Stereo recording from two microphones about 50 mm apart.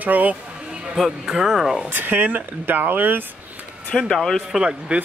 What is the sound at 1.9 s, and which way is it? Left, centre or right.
Speech, right.